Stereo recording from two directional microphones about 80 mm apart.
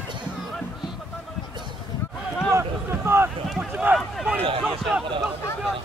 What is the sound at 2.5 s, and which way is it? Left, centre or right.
Run, right.